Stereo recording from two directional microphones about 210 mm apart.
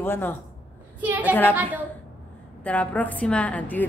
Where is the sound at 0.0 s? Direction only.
10° left (ahead or behind).